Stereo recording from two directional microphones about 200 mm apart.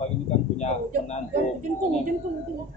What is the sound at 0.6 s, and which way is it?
Speech, 35° left (ahead or behind).